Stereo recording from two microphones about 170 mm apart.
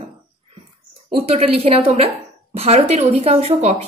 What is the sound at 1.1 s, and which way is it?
A woman's voice, 35° right (ahead or behind).